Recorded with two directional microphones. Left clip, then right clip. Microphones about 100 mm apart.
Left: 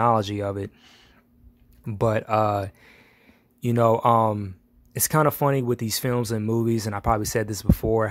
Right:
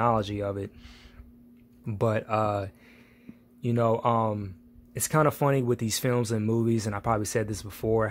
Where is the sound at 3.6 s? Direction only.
55° left (ahead or behind).